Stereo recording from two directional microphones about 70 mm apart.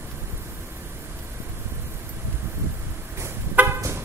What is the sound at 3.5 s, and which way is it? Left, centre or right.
Vehicle, right.